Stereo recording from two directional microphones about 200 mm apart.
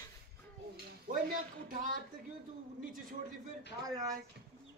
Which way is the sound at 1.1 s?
45° right (ahead or behind).